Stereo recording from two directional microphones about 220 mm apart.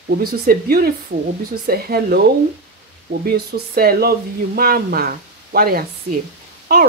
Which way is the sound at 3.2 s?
45° right (ahead or behind).